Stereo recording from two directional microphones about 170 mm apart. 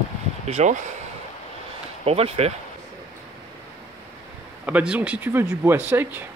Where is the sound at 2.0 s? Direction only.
35° right (ahead or behind).